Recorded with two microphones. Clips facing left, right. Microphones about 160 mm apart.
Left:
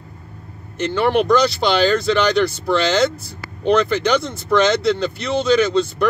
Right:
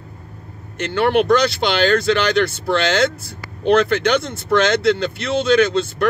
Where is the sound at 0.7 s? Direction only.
Centre (ahead or behind).